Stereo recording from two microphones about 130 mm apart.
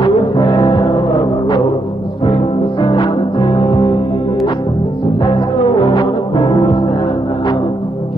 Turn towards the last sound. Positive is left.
turn(degrees=35)  # may be behind; listen again after turning